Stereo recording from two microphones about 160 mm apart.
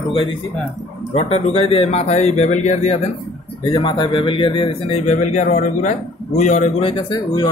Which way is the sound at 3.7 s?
30° left (ahead or behind).